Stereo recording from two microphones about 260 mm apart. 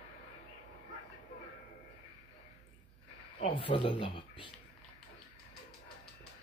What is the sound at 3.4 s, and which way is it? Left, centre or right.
Speech, centre.